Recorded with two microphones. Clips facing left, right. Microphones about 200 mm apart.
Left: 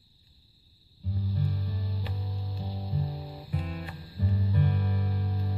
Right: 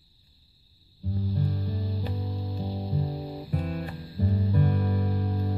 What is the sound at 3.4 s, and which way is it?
Music, 45° right (ahead or behind).